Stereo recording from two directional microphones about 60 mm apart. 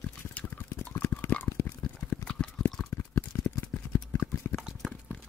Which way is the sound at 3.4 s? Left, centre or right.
Left.